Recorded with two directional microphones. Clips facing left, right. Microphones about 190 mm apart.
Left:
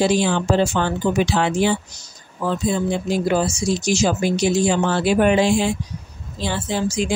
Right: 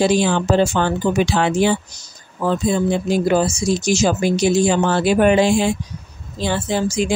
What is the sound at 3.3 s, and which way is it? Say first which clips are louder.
Speech: right 3 dB; 45° right (ahead or behind).